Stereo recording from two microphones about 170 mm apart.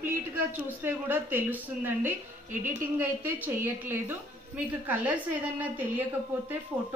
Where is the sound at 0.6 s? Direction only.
10° right (ahead or behind).